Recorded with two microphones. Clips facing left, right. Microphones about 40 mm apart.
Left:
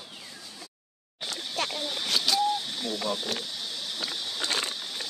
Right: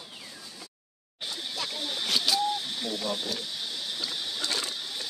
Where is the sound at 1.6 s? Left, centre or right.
Left.